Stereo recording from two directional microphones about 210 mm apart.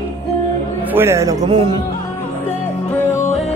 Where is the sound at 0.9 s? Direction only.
10° right (ahead or behind).